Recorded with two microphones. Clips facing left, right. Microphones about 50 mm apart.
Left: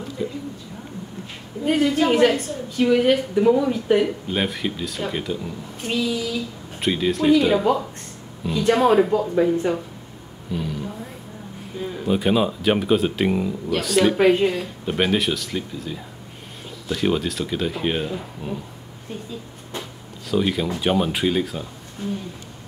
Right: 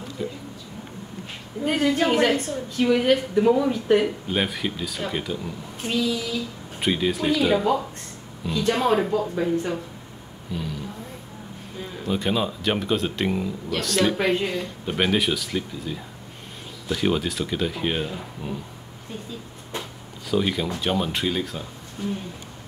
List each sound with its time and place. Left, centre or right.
0.2 s a man's voice: centre
1.8 s a woman's voice: right
2.8 s a man's voice: centre
11.8 s speech: centre
14.5 s a man's voice: centre
20.2 s speech: centre